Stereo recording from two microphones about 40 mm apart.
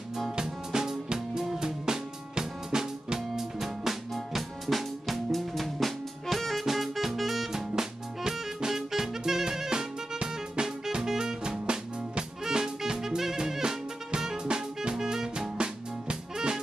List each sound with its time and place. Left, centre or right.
0.4 s music: centre